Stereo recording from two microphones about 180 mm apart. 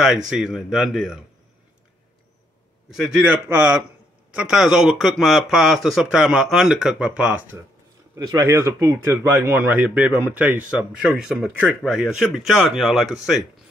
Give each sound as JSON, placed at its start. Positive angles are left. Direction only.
{"t": 0.3, "sound": "speech", "side_deg": 0}
{"t": 3.0, "sound": "a man's voice", "side_deg": -5}
{"t": 8.2, "sound": "a man's voice", "side_deg": -20}